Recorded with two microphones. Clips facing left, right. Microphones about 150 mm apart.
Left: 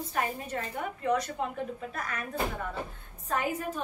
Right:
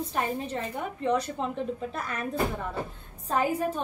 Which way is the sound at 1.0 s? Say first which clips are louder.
Right 2 dB; 30° right (ahead or behind).